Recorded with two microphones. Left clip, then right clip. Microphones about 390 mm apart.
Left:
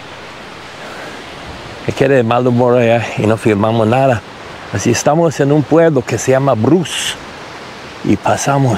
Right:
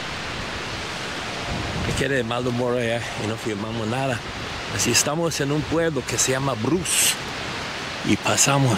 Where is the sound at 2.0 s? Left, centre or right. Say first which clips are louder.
Left 14 dB; left.